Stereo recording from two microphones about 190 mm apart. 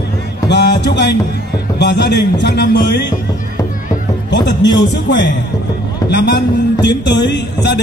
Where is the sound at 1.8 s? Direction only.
65° left (ahead or behind).